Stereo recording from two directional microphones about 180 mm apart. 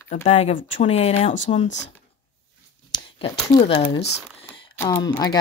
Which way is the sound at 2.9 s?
25° left (ahead or behind).